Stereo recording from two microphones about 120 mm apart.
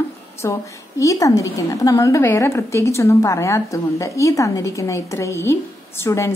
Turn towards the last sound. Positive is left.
turn(degrees=20)  # may be behind; listen again after turning